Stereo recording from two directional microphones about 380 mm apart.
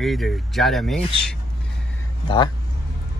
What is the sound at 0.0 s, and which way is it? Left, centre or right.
Speech, centre.